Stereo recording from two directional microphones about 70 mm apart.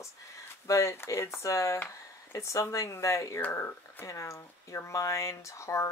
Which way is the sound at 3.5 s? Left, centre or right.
Left.